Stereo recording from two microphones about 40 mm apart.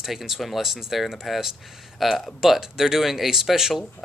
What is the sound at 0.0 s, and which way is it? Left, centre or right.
Speech, centre.